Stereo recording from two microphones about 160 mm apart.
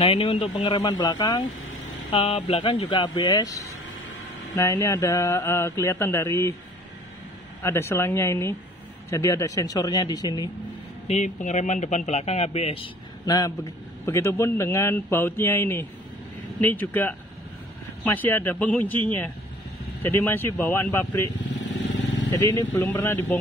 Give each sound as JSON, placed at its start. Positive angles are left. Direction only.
{"t": 0.0, "sound": "mantra", "side_deg": 35}
{"t": 2.0, "sound": "speech", "side_deg": 30}
{"t": 4.6, "sound": "mantra", "side_deg": 20}
{"t": 7.6, "sound": "a man's voice", "side_deg": 15}
{"t": 9.1, "sound": "mantra", "side_deg": 20}
{"t": 11.1, "sound": "speech", "side_deg": 50}
{"t": 13.2, "sound": "a man's voice", "side_deg": 25}
{"t": 22.3, "sound": "mantra", "side_deg": 20}